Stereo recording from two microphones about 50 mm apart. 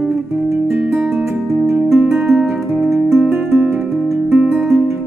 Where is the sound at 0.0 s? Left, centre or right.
Centre.